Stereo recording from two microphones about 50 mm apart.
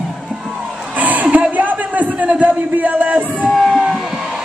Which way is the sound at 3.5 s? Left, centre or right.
Centre.